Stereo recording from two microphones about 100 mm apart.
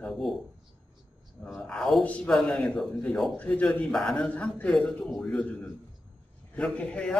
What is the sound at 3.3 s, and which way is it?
A man's voice, 15° left (ahead or behind).